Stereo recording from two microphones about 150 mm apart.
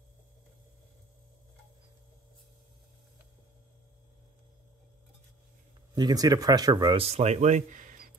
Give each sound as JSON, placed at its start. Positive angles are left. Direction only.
{"t": 5.9, "sound": "speech", "side_deg": -25}